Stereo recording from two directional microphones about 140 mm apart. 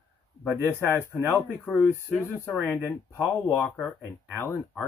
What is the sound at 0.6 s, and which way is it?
Speech, 15° left (ahead or behind).